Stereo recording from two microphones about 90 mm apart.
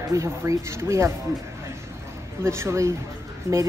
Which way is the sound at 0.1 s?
35° right (ahead or behind).